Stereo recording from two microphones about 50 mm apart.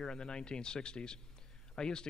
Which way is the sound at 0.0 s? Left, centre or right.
Centre.